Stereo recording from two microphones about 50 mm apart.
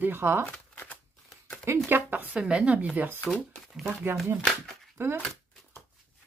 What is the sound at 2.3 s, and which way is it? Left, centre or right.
Speech, right.